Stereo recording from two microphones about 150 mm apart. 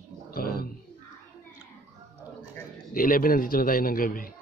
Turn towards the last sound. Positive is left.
turn(degrees=70)  # may be behind; listen again after turning